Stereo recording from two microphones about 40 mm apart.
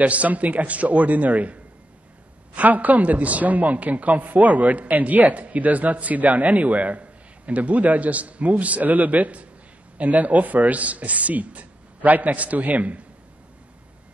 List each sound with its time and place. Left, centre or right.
0.0 s a woman's voice: right